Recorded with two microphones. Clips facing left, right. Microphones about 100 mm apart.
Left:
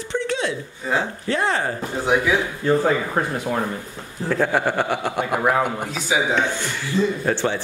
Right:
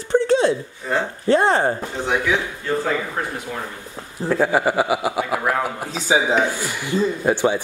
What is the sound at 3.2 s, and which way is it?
Speech, 35° left (ahead or behind).